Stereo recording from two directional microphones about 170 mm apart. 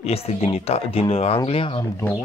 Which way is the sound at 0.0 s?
35° left (ahead or behind).